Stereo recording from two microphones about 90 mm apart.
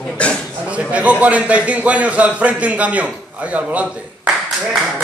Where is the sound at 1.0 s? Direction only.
15° right (ahead or behind).